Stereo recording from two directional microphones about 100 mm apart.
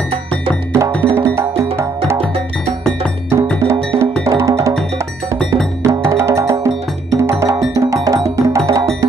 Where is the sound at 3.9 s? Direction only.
30° right (ahead or behind).